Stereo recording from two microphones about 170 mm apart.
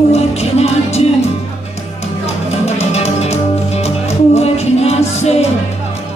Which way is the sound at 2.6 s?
40° left (ahead or behind).